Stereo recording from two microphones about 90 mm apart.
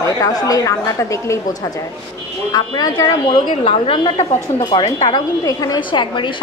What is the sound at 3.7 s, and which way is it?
A woman's voice, 75° left (ahead or behind).